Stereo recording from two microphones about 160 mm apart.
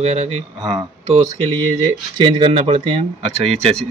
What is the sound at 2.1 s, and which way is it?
Speech, 35° right (ahead or behind).